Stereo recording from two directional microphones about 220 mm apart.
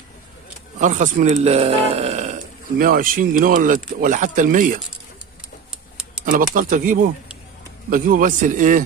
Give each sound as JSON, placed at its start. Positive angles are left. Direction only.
{"t": 0.7, "sound": "speech", "side_deg": -35}
{"t": 6.2, "sound": "speech", "side_deg": -40}